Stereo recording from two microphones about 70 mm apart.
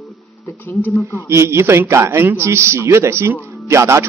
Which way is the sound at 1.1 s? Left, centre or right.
Right.